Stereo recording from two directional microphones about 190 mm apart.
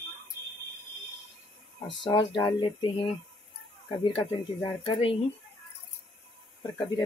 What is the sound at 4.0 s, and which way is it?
Speech, 30° left (ahead or behind).